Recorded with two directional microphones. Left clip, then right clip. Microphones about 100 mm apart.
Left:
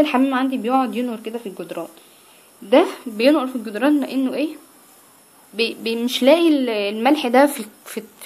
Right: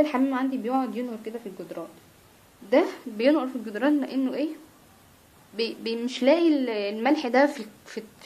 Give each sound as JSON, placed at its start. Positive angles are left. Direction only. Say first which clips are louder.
{"t": 0.0, "sound": "a woman's voice", "louder": "left 6 dB", "side_deg": 30}
{"t": 3.2, "sound": "a woman's voice", "louder": "left 6 dB", "side_deg": 15}
{"t": 5.6, "sound": "a woman's voice", "louder": "left 7 dB", "side_deg": 10}